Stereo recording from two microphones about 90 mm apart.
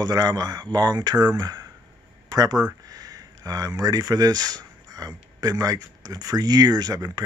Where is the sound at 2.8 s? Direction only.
45° right (ahead or behind).